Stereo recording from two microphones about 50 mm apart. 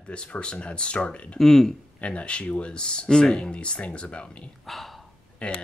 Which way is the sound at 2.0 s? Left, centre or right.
Left.